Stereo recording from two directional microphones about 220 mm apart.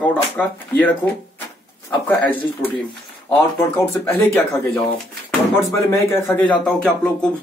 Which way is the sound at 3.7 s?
10° left (ahead or behind).